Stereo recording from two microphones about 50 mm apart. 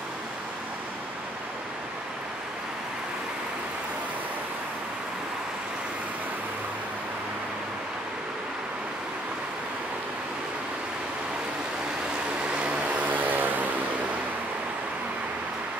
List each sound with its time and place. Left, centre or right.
12.5 s vehicle: right